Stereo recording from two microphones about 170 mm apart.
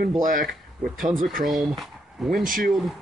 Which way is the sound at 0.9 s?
Centre (ahead or behind).